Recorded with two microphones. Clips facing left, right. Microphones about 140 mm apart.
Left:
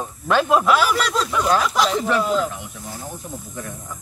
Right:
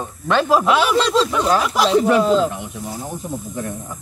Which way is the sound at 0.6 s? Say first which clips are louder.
Right 2 dB; 20° right (ahead or behind).